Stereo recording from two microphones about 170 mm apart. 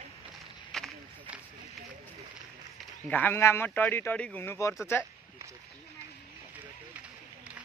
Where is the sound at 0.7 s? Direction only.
Centre (ahead or behind).